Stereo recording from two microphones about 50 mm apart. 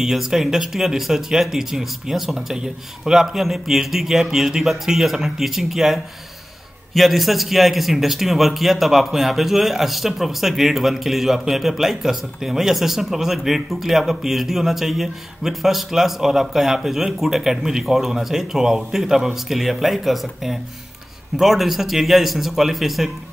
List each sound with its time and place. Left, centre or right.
0.0 s a man's voice: centre